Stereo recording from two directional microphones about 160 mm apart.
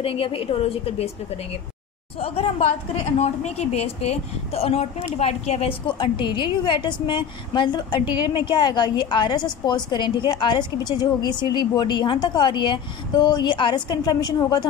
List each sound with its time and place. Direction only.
0.0 s a woman's voice: 35° left (ahead or behind)
2.1 s a woman's voice: 40° left (ahead or behind)